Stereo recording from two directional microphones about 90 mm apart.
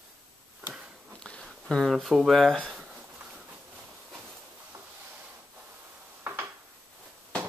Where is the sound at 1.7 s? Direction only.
Centre (ahead or behind).